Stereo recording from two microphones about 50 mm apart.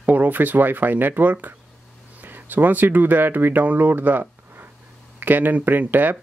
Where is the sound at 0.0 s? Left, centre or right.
Right.